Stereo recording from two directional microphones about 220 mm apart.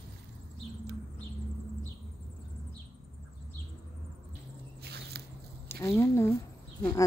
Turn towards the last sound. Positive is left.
turn(degrees=10)  # may be behind; listen again after turning